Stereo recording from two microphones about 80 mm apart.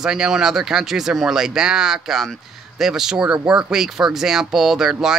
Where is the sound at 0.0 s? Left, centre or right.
Centre.